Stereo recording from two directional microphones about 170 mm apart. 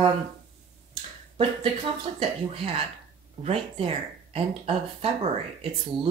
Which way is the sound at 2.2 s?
35° right (ahead or behind).